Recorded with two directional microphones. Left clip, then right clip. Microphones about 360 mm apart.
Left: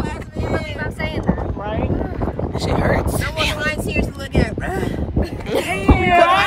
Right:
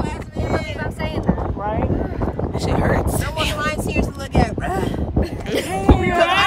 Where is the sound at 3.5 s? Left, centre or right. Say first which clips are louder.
Left 1 dB; centre.